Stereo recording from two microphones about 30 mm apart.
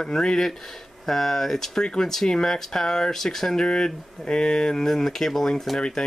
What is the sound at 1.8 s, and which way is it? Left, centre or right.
Speech, left.